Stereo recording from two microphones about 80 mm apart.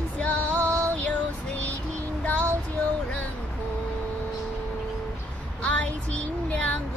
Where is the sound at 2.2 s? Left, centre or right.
Centre.